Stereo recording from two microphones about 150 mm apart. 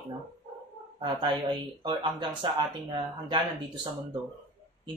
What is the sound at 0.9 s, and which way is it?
Speech, 30° right (ahead or behind).